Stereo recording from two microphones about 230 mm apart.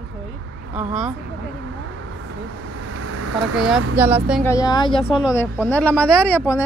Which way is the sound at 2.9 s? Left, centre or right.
Right.